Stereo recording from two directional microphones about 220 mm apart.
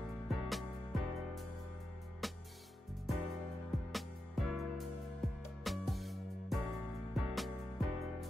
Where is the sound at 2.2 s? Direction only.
Centre (ahead or behind).